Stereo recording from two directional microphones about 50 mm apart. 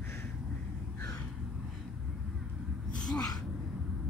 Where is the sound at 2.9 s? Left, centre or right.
Centre.